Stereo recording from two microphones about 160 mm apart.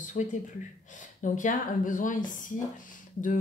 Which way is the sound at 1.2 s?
55° left (ahead or behind).